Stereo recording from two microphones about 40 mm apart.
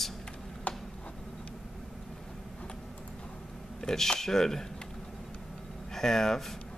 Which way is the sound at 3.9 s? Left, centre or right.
Centre.